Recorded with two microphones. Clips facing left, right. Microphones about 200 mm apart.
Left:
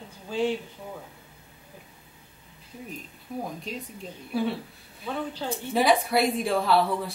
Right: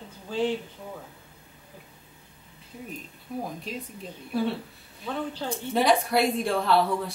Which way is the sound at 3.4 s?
Centre (ahead or behind).